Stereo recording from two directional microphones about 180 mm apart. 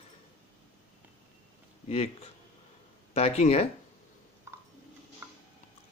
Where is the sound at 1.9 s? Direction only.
35° left (ahead or behind).